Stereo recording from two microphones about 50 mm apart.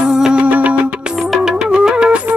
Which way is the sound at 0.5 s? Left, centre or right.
Right.